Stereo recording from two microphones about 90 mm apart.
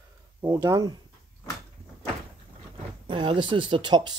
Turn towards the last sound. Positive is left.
turn(degrees=-55)  # may be behind; listen again after turning